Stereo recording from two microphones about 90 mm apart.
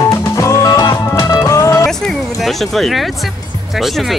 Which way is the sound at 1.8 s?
5° left (ahead or behind).